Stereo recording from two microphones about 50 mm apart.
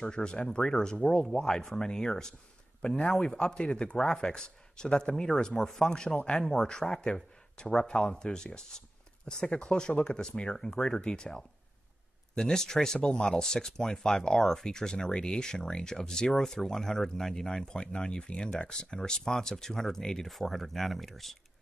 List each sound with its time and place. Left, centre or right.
0.0 s speech: centre